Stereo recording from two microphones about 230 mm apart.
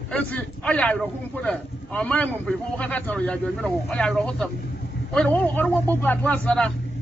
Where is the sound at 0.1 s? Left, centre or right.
Centre.